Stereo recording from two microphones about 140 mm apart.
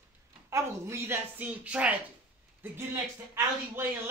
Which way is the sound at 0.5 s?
20° right (ahead or behind).